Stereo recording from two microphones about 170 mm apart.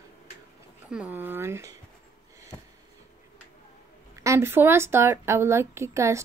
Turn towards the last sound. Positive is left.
turn(degrees=-15)  # may be behind; listen again after turning